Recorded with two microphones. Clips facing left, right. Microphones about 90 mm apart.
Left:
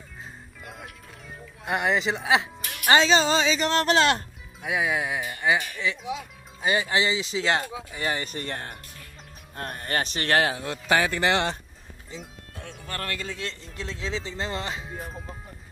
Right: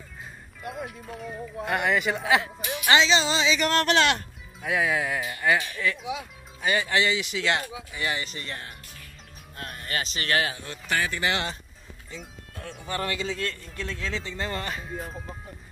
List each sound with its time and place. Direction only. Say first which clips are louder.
1.7 s speech: left 1 dB; 25° left (ahead or behind)
2.9 s speech: left 2 dB; 45° left (ahead or behind)
3.5 s speech: left 1 dB; 25° left (ahead or behind)
4.6 s speech: right 1 dB; 10° left (ahead or behind)
6.6 s speech: even; 30° left (ahead or behind)
7.9 s speech: left 1 dB; 40° left (ahead or behind); by 11.5 s 60° left (ahead or behind)
12.2 s speech: right 1 dB; centre (ahead or behind)
13.4 s speech: right 3 dB; 25° left (ahead or behind)